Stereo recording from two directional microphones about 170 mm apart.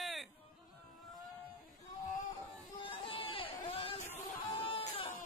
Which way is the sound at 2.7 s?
30° left (ahead or behind).